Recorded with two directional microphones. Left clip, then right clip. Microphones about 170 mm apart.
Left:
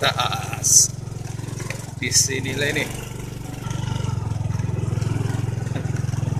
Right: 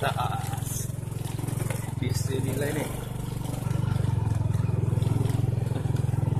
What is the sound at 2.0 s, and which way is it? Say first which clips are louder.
Speech: left 12 dB; 15° left (ahead or behind).